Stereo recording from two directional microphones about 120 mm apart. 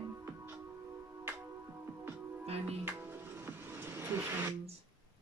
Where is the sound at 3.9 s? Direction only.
20° right (ahead or behind).